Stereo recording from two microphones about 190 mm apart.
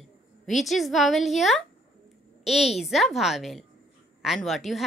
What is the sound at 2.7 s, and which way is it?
A woman's voice, centre (ahead or behind).